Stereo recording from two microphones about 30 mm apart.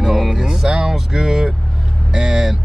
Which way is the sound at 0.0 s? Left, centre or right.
Centre.